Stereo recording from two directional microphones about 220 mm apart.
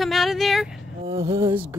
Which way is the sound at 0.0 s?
Centre (ahead or behind).